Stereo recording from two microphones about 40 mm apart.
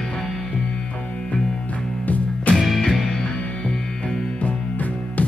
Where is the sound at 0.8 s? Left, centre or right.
Left.